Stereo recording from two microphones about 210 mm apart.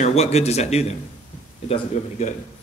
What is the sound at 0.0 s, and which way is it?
Speech, 30° left (ahead or behind).